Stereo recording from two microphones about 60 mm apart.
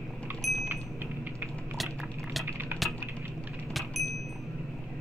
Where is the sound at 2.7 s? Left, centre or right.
Right.